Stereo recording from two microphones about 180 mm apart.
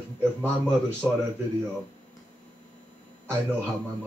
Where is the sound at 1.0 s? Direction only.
10° right (ahead or behind).